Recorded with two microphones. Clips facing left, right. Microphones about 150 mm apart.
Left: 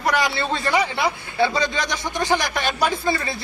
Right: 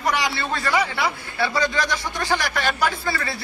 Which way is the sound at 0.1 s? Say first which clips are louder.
Left 3 dB; 55° left (ahead or behind).